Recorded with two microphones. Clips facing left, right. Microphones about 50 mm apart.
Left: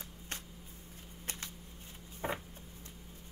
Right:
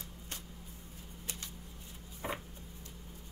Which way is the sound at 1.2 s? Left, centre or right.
Left.